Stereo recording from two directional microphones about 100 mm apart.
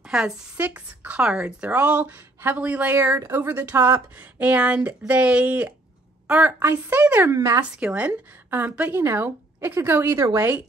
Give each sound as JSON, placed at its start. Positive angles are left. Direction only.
{"t": 0.1, "sound": "a woman's voice", "side_deg": -5}
{"t": 0.6, "sound": "a woman's voice", "side_deg": -15}
{"t": 7.3, "sound": "speech", "side_deg": -35}
{"t": 7.8, "sound": "a woman's voice", "side_deg": -10}
{"t": 10.1, "sound": "speech", "side_deg": -30}